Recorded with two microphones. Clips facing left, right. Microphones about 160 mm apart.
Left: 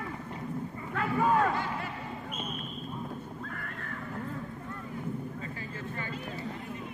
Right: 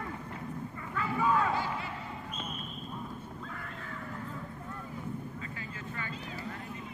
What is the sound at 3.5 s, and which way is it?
Neigh, 55° left (ahead or behind).